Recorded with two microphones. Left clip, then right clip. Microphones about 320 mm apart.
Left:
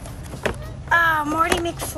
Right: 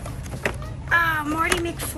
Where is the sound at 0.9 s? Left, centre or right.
Centre.